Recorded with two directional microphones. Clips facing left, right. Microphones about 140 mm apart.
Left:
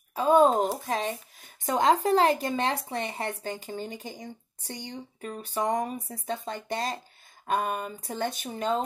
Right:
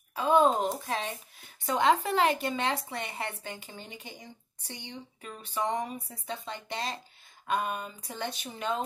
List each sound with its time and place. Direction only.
0.1 s speech: 40° left (ahead or behind)
0.5 s speech: centre (ahead or behind)
0.8 s speech: 45° left (ahead or behind)